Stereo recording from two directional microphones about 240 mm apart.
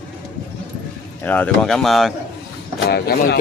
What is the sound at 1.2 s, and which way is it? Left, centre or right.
Speech, centre.